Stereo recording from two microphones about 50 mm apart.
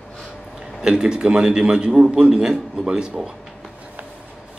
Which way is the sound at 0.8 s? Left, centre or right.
Centre.